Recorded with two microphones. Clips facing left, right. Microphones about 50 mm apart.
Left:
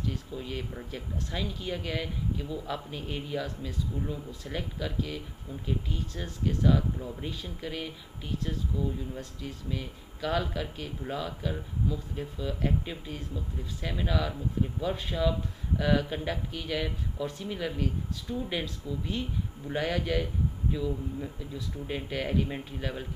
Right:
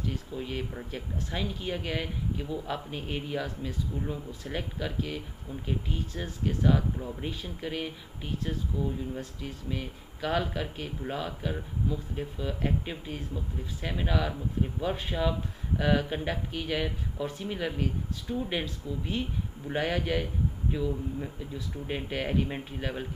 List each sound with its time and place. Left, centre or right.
0.3 s speech: centre